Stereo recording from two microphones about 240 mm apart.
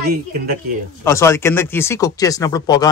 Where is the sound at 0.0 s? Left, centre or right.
Right.